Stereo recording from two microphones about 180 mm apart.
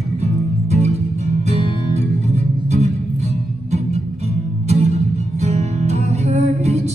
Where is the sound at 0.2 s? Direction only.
35° right (ahead or behind).